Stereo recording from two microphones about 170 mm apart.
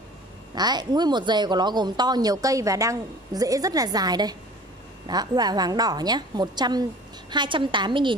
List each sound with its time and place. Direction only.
0.6 s a woman's voice: 25° right (ahead or behind)